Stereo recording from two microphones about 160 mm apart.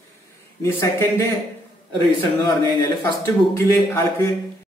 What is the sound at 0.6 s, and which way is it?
Speech, 15° left (ahead or behind).